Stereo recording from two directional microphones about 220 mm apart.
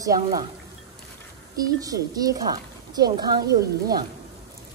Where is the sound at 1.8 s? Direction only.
15° right (ahead or behind).